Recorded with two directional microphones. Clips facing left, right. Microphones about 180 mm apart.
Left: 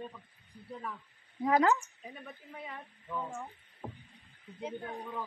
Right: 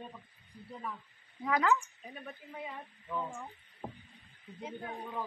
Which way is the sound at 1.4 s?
35° left (ahead or behind).